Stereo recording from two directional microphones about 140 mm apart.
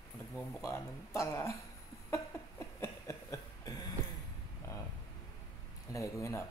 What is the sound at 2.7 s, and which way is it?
Cough, 20° left (ahead or behind).